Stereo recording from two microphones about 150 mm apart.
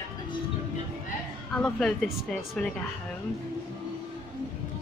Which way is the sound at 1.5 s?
5° left (ahead or behind).